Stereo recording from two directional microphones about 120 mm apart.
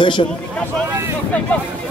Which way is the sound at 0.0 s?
45° left (ahead or behind).